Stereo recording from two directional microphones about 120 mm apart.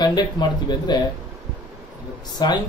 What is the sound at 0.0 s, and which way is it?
Speech, 35° left (ahead or behind).